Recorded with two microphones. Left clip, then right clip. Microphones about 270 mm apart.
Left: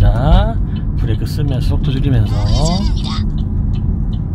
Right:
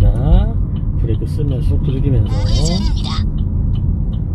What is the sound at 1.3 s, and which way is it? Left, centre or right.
Speech, left.